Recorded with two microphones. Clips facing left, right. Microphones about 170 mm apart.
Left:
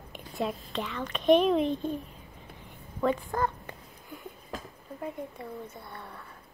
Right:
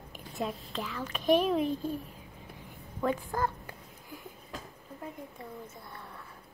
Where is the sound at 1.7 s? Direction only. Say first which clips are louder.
Left 2 dB; 25° left (ahead or behind).